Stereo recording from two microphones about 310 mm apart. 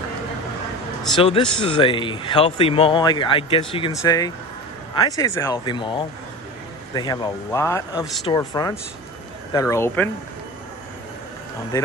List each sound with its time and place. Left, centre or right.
1.2 s speech: centre
8.3 s speech: centre